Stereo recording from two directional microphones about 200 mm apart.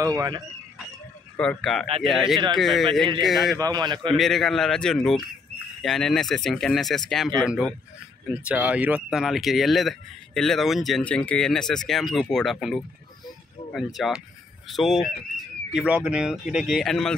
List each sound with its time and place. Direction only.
0.0 s speech: 15° right (ahead or behind)
1.3 s speech: 5° left (ahead or behind)
3.5 s a man's voice: 20° right (ahead or behind)
4.2 s speech: centre (ahead or behind)